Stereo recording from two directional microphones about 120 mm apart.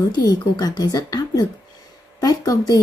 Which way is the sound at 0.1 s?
35° left (ahead or behind).